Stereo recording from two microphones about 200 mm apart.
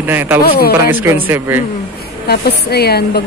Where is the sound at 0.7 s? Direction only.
10° right (ahead or behind).